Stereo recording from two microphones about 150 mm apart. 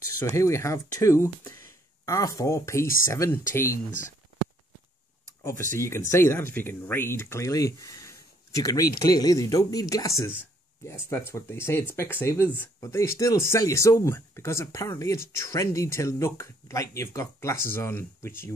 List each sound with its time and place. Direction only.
0.2 s speech: 20° left (ahead or behind)
5.4 s speech: 20° left (ahead or behind)